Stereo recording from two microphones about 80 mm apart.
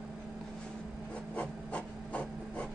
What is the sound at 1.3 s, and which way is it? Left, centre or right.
Printer, centre.